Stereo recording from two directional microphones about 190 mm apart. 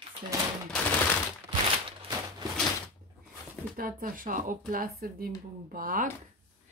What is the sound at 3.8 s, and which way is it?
Speech, 50° right (ahead or behind).